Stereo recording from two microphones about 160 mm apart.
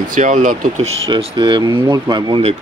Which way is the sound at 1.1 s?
30° right (ahead or behind).